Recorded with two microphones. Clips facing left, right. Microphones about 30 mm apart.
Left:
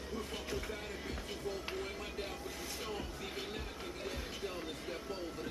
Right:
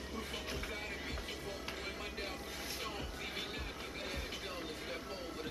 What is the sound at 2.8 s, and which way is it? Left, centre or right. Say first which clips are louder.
Music: left 3 dB; centre.